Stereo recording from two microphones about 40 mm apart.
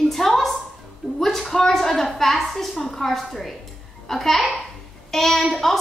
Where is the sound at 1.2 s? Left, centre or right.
Centre.